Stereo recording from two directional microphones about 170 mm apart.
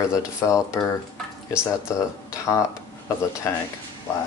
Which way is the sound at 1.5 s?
5° right (ahead or behind).